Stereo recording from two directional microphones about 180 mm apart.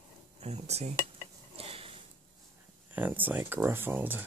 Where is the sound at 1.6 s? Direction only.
30° right (ahead or behind).